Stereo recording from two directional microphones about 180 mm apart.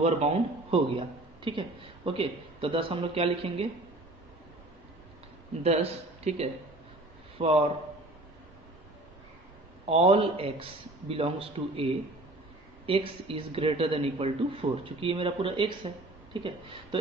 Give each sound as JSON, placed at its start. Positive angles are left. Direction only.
{"t": 0.0, "sound": "a man's voice", "side_deg": -35}
{"t": 5.6, "sound": "a man's voice", "side_deg": -35}
{"t": 9.8, "sound": "a man's voice", "side_deg": -30}